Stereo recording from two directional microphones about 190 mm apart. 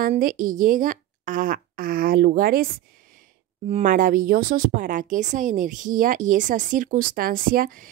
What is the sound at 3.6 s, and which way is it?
Speech, 40° right (ahead or behind).